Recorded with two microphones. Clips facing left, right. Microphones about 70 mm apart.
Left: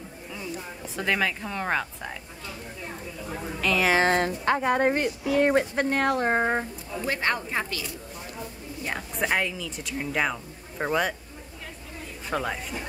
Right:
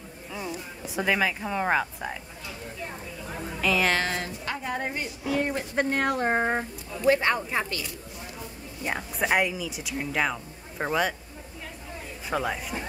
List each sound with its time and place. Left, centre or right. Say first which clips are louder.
0.9 s speech: right 1 dB; centre
3.6 s a woman's voice: even; centre
4.0 s a woman's voice: left 8 dB; left
4.6 s speech: left 7 dB; left
5.8 s a woman's voice: left 1 dB; centre
7.2 s speech: right 1 dB; centre
8.8 s speech: right 1 dB; centre
12.3 s a woman's voice: right 1 dB; centre